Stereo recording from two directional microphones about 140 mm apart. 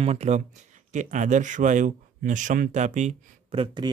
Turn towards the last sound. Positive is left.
turn(degrees=-30)  # may be behind; listen again after turning